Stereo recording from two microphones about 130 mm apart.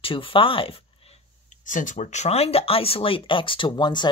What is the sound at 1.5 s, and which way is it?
Speech, 80° left.